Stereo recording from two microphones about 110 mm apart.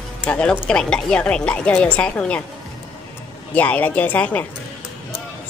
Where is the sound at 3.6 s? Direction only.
15° left (ahead or behind).